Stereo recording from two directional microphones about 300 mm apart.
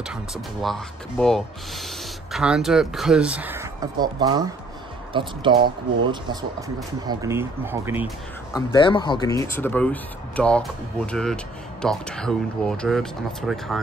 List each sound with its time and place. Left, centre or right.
0.0 s speech: centre
7.1 s speech: centre
8.5 s speech: centre